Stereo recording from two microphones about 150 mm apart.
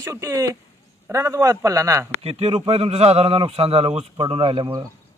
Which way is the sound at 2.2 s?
40° right (ahead or behind).